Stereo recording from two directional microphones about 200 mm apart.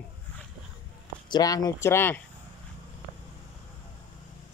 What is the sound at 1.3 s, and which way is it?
Speech, 20° left (ahead or behind).